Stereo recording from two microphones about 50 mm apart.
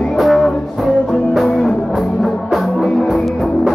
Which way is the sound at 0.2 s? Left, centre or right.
Centre.